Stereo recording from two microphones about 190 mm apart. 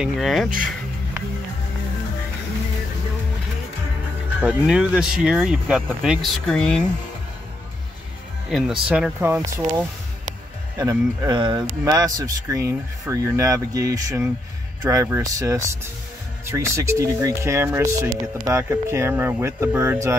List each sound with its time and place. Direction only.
0.0 s speech: centre (ahead or behind)
4.4 s speech: 5° right (ahead or behind)
8.5 s speech: centre (ahead or behind)
10.8 s speech: 20° right (ahead or behind)